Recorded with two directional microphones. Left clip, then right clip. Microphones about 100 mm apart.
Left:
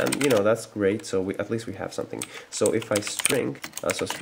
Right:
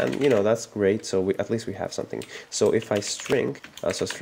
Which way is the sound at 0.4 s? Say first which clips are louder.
Even; 40° right (ahead or behind).